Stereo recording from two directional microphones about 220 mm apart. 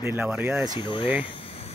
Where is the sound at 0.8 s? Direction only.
20° left (ahead or behind).